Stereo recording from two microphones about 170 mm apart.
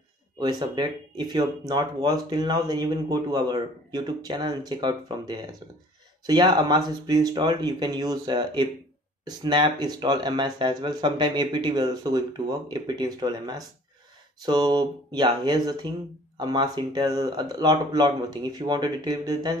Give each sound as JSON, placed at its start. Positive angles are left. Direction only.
{"t": 0.4, "sound": "speech", "side_deg": -25}